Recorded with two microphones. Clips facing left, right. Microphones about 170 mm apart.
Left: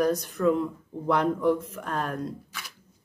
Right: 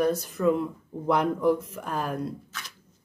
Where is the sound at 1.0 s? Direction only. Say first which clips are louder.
Even; 10° right (ahead or behind).